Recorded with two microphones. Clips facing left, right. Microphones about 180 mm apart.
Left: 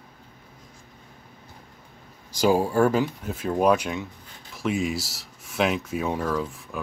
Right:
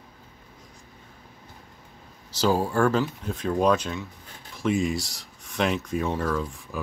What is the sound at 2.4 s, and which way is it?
Speech, 10° left (ahead or behind).